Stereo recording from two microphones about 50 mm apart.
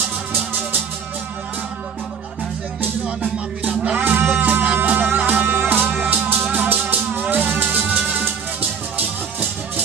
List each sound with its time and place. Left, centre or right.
2.8 s music: right